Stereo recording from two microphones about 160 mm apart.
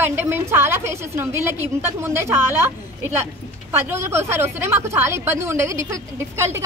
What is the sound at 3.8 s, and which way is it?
A woman's voice, 15° right (ahead or behind).